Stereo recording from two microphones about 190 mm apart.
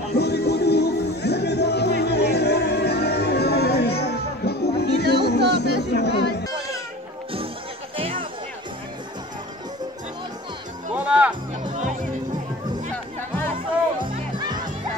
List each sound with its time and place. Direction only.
0.1 s music: 60° left (ahead or behind)
7.9 s music: 30° right (ahead or behind)
11.0 s music: 5° right (ahead or behind)
13.9 s music: 25° right (ahead or behind)